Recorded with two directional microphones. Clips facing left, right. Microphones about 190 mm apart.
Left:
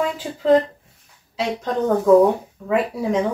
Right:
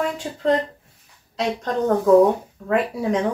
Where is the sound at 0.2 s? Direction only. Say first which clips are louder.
Left 8 dB; 5° left (ahead or behind).